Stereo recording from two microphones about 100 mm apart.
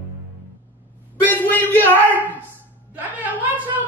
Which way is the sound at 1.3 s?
20° left (ahead or behind).